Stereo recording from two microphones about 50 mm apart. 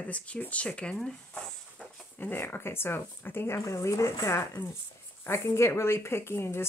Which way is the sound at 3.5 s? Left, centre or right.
Left.